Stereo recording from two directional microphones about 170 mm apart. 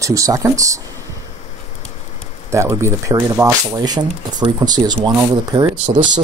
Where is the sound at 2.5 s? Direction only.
15° right (ahead or behind).